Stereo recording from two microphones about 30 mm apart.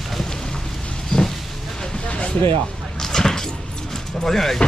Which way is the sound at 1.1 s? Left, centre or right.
Left.